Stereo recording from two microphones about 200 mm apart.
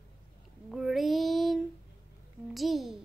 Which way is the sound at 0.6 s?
Centre (ahead or behind).